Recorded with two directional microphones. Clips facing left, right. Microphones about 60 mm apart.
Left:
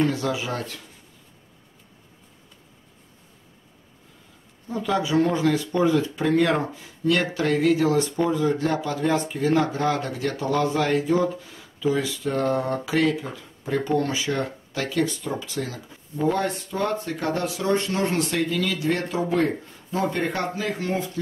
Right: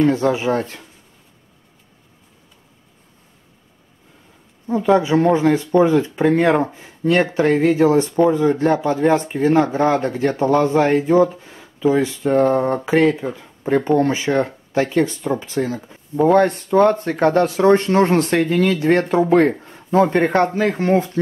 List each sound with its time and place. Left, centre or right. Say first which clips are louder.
0.1 s speech: right 9 dB; right
4.6 s speech: right 9 dB; right
16.3 s speech: right 12 dB; right